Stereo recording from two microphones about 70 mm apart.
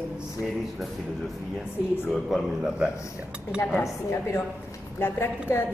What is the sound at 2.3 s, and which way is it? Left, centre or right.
Speech, centre.